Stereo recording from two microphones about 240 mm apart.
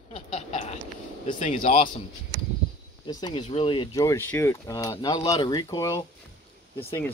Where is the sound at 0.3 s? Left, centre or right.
Left.